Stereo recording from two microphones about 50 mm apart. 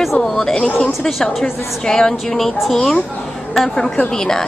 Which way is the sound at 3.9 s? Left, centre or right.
Centre.